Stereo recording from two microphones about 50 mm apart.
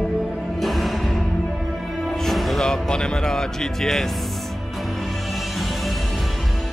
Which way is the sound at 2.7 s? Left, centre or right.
Centre.